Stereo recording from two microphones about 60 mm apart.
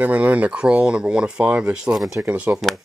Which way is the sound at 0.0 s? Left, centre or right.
Right.